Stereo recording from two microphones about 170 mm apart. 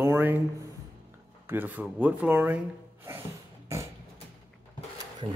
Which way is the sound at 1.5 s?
10° right (ahead or behind).